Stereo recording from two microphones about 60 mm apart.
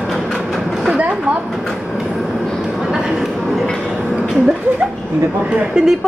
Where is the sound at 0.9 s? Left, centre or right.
Right.